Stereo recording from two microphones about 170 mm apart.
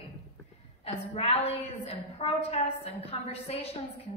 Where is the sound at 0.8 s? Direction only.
35° left (ahead or behind).